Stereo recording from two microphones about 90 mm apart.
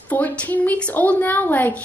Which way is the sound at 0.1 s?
20° left (ahead or behind).